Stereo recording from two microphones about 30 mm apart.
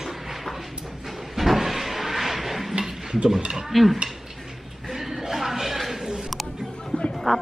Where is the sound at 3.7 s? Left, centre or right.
Centre.